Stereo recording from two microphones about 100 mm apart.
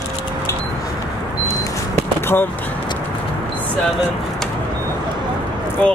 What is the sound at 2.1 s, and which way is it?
Speech, 20° left (ahead or behind).